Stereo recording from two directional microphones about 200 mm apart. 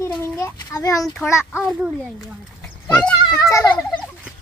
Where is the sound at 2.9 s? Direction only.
5° left (ahead or behind).